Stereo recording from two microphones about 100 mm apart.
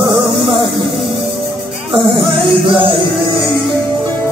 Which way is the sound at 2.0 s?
55° right (ahead or behind).